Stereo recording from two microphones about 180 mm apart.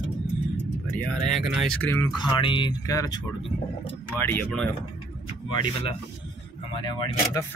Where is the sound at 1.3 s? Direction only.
Centre (ahead or behind).